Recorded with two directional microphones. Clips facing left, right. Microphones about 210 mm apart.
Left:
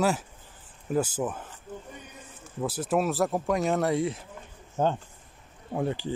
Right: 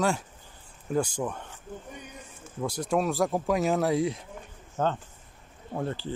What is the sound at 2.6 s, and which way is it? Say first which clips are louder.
Speech: left 1 dB; 5° left (ahead or behind).